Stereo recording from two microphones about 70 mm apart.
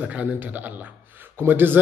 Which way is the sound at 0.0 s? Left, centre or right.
Right.